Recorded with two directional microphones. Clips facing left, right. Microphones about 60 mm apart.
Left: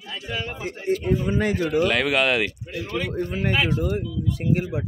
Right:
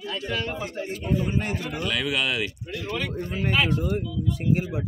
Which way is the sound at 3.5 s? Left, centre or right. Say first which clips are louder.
Even; centre.